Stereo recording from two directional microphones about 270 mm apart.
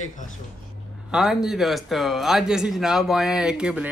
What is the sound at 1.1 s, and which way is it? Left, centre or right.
Speech, centre.